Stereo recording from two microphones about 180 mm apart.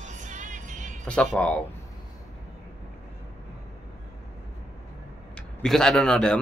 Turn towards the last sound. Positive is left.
turn(degrees=5)  # may be behind; listen again after turning